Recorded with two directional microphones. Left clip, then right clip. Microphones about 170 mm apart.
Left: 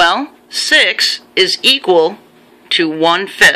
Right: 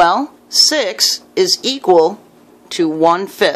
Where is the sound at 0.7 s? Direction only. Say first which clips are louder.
Left 4 dB; 25° right (ahead or behind).